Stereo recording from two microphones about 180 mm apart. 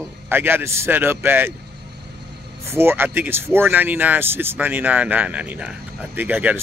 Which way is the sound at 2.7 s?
15° right (ahead or behind).